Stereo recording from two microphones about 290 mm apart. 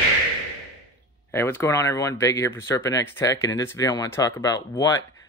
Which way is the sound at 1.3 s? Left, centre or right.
Centre.